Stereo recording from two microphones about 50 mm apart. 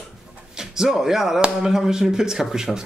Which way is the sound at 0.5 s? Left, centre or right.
Centre.